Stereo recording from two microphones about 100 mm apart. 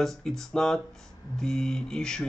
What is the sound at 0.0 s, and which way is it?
Speech, 5° left (ahead or behind).